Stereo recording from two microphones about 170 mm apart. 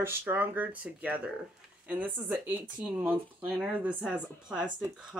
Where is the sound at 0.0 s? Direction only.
10° right (ahead or behind).